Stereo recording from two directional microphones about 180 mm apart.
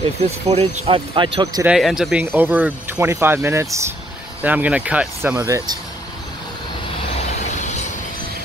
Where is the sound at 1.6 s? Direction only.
5° right (ahead or behind).